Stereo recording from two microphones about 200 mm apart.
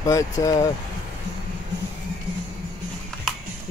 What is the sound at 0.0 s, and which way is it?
Speech, 15° left (ahead or behind).